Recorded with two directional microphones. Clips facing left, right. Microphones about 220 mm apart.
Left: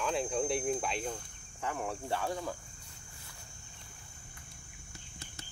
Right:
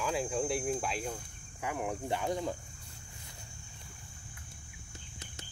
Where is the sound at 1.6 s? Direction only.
15° right (ahead or behind).